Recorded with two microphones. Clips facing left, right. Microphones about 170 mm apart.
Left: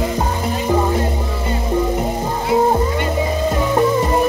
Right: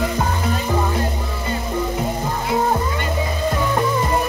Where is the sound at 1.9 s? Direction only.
25° left (ahead or behind).